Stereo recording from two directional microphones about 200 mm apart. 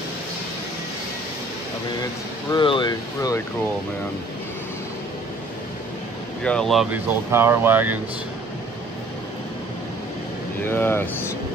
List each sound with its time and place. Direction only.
2.5 s speech: 25° left (ahead or behind)
6.4 s speech: 5° left (ahead or behind)
7.2 s speech: 10° right (ahead or behind)
10.7 s speech: 10° left (ahead or behind)